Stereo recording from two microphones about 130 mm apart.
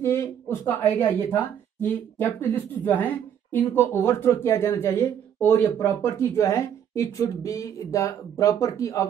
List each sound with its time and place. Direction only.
0.0 s speech: 20° left (ahead or behind)